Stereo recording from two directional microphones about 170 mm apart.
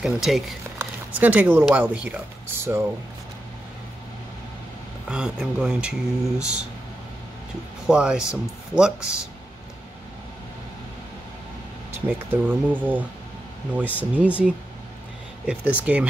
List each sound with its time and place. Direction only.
0.0 s speech: centre (ahead or behind)
5.0 s speech: 5° right (ahead or behind)
7.9 s speech: 5° right (ahead or behind)
12.1 s speech: 10° right (ahead or behind)